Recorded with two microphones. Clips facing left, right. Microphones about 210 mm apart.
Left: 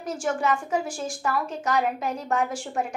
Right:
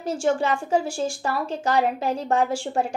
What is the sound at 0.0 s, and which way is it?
A woman's voice, 30° right (ahead or behind).